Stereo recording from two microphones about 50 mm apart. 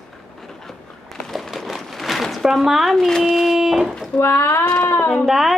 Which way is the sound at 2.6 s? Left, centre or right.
Centre.